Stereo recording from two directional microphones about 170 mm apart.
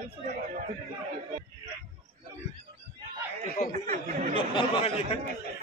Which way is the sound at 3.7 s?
40° right (ahead or behind).